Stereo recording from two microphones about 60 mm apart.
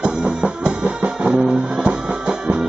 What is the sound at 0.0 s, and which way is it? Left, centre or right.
Music, centre.